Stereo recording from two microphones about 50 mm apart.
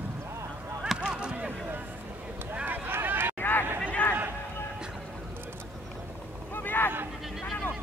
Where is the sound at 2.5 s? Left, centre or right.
Right.